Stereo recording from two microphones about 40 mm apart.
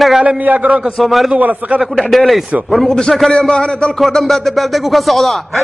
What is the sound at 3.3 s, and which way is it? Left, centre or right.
Speech, left.